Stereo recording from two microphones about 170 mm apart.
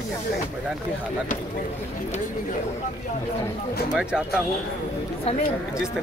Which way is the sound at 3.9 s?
5° right (ahead or behind).